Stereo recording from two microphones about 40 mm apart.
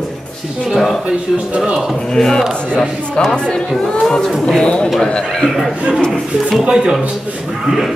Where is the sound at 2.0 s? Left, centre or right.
Centre.